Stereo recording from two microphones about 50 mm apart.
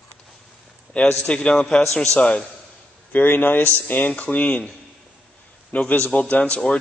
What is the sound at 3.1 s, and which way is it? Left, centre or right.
A man's voice, left.